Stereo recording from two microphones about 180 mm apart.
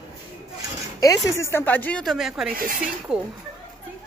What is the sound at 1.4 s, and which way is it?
Speech, 10° left (ahead or behind).